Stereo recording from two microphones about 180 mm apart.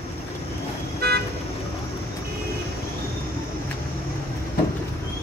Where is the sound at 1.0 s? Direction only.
60° right (ahead or behind).